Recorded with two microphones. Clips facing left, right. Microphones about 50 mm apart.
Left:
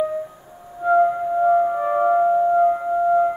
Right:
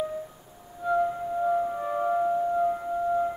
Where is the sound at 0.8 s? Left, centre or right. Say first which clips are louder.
Left 9 dB; left.